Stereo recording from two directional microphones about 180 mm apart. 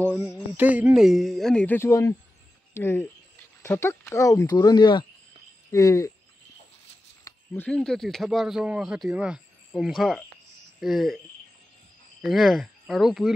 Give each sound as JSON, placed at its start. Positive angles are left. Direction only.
{"t": 0.1, "sound": "speech", "side_deg": -5}
{"t": 7.2, "sound": "speech", "side_deg": 10}
{"t": 12.2, "sound": "speech", "side_deg": 0}